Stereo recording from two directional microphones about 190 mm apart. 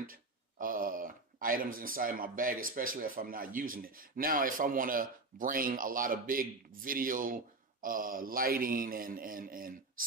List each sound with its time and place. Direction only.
0.0 s speech: 45° right (ahead or behind)